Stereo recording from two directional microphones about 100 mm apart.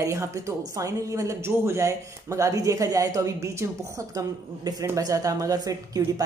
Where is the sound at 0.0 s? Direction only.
35° right (ahead or behind).